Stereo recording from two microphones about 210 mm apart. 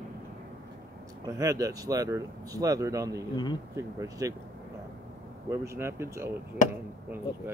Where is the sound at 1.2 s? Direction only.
15° right (ahead or behind).